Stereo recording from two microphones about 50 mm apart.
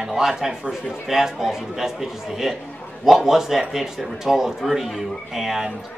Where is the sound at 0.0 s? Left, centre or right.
Centre.